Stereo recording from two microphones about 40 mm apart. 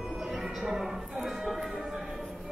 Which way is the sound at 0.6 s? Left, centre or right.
Centre.